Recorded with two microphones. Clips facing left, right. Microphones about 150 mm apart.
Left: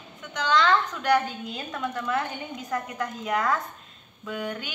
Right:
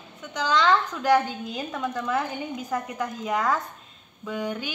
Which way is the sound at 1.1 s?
15° right (ahead or behind).